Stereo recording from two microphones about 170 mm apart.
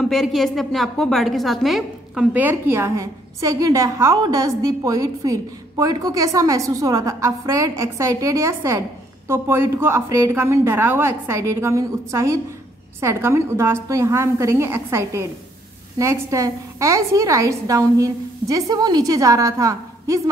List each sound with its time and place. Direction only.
0.0 s a woman's voice: centre (ahead or behind); by 20.2 s 20° right (ahead or behind)